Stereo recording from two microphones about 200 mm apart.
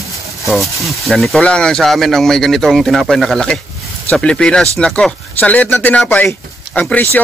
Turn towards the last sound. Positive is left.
turn(degrees=10)  # may be behind; listen again after turning